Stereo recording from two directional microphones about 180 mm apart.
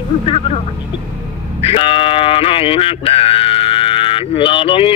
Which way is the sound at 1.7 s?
30° left (ahead or behind).